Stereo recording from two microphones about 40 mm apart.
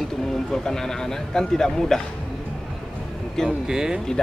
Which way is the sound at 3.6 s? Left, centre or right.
Centre.